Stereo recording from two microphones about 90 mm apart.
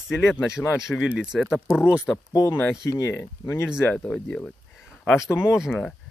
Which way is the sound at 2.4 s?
20° left (ahead or behind).